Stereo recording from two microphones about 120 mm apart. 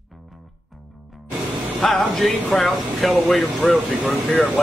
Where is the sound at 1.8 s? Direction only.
5° left (ahead or behind).